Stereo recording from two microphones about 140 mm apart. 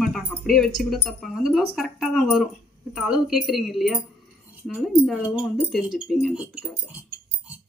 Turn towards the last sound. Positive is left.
turn(degrees=0)  # may be behind; listen again after turning